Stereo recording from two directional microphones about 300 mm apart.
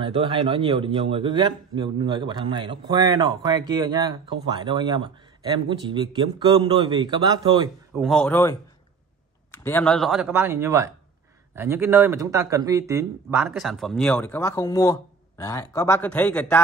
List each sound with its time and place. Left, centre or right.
0.0 s a man's voice: centre
8.0 s speech: centre
9.6 s speech: centre